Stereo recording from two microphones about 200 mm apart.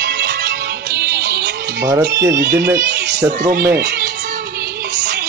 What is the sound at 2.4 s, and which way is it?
Speech, 55° right (ahead or behind).